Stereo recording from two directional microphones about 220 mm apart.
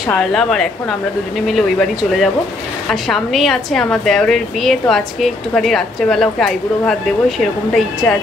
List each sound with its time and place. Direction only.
0.1 s a woman's voice: centre (ahead or behind)